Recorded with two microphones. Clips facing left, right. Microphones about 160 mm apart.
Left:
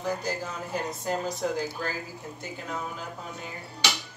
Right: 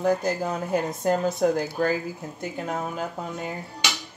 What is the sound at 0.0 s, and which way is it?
Speech, 55° right (ahead or behind).